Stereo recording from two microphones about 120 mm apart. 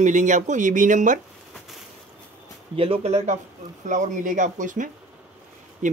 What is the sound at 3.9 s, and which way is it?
Speech, 90° right.